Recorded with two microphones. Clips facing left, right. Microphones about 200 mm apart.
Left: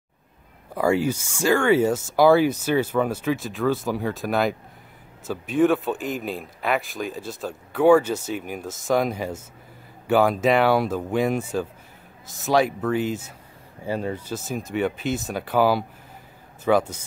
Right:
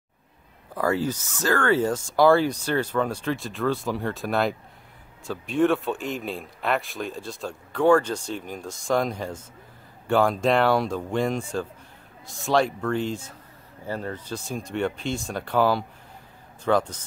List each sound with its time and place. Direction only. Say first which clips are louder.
0.7 s speech: left 3 dB; 15° left (ahead or behind)